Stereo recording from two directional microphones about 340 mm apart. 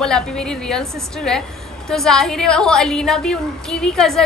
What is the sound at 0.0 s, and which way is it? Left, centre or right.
A woman's voice, centre.